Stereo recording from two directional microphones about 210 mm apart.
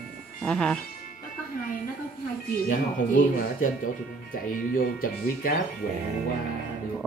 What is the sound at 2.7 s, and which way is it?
Speech, 40° left (ahead or behind).